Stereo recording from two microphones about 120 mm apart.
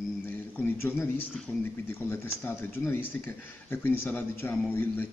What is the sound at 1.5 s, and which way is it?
Speech, 20° left (ahead or behind).